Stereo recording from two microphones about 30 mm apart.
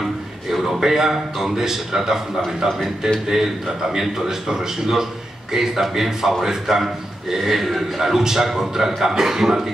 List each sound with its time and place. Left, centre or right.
0.0 s a man's voice: centre